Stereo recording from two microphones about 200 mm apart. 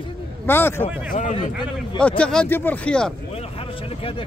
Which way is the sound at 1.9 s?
5° left (ahead or behind).